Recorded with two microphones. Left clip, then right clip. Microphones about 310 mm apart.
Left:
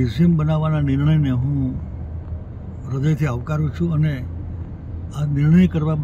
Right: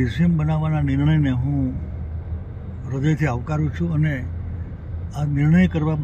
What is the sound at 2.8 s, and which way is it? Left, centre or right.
Speech, left.